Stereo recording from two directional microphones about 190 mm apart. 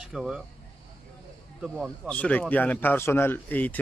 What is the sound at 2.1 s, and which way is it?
Speech, 5° left (ahead or behind).